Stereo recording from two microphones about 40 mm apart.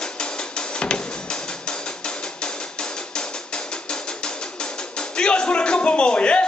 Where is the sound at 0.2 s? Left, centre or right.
Left.